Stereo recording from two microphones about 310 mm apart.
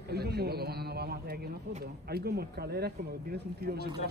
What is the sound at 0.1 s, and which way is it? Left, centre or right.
A man's voice, right.